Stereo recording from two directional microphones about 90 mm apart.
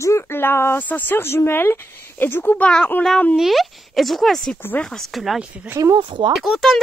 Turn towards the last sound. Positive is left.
turn(degrees=0)  # may be behind; listen again after turning